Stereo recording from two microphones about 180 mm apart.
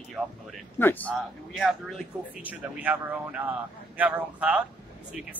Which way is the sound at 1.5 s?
Centre (ahead or behind).